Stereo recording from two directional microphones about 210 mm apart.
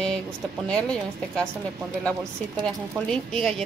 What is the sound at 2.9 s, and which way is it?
Speech, centre (ahead or behind).